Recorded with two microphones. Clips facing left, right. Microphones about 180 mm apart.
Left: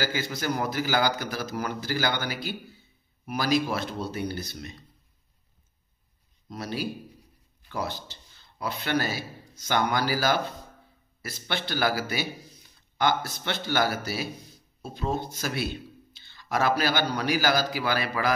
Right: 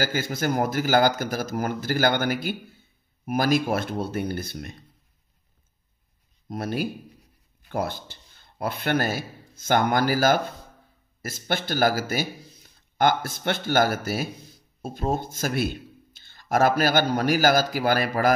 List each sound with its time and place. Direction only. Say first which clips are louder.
0.0 s speech: right 4 dB; 50° right (ahead or behind)
6.5 s speech: right 4 dB; 50° right (ahead or behind)